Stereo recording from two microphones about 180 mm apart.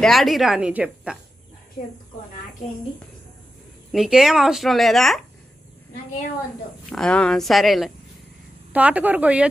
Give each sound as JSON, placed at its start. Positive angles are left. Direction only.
{"t": 0.0, "sound": "speech", "side_deg": 0}
{"t": 3.9, "sound": "speech", "side_deg": 0}
{"t": 6.9, "sound": "a woman's voice", "side_deg": 5}